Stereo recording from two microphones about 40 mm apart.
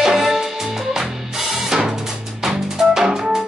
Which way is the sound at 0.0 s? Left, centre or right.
Centre.